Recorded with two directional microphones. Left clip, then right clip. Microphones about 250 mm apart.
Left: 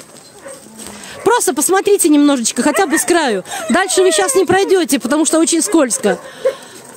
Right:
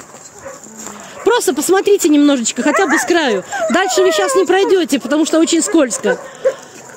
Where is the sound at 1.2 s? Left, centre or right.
Left.